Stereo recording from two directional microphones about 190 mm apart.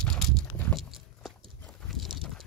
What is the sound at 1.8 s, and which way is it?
Dog, centre (ahead or behind).